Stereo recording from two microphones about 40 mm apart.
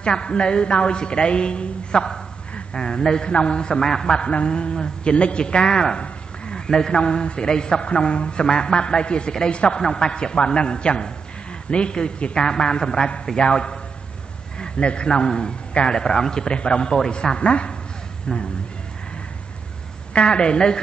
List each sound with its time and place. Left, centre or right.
0.0 s a woman's voice: left
20.1 s a woman's voice: left